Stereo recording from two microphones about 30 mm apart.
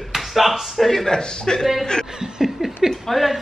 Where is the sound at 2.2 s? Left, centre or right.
Centre.